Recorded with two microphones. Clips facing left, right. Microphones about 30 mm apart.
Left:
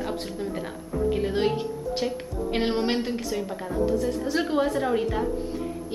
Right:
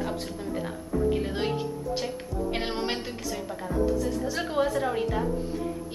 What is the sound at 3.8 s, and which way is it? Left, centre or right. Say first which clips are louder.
Speech: left 2 dB; centre.